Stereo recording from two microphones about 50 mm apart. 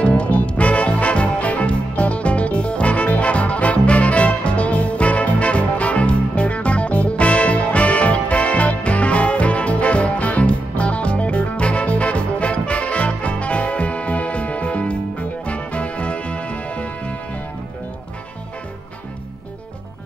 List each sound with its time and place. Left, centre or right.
0.0 s music: left